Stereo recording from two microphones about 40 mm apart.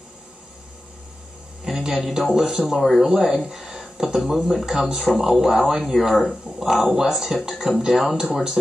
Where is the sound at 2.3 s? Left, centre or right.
Centre.